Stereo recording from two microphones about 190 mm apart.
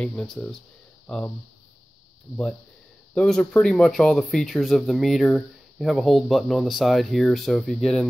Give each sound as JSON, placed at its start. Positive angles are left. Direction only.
{"t": 0.0, "sound": "speech", "side_deg": 5}
{"t": 3.2, "sound": "speech", "side_deg": 5}